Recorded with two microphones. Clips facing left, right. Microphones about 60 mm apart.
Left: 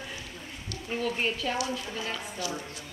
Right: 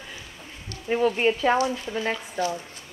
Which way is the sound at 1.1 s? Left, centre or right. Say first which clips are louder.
Right 9 dB; right.